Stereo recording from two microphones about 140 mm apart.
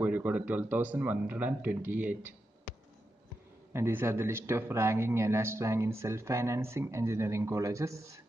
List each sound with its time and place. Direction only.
0.0 s speech: 10° right (ahead or behind)
3.7 s speech: 20° right (ahead or behind)